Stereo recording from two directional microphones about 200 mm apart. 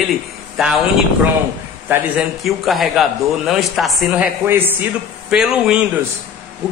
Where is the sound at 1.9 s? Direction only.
5° right (ahead or behind).